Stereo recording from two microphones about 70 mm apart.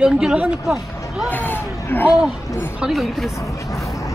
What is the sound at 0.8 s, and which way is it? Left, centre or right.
Speech, left.